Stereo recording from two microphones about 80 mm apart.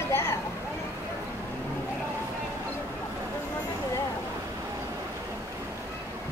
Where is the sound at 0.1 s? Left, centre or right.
Left.